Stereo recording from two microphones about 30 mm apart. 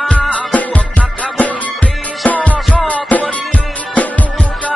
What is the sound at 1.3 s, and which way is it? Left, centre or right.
Music, left.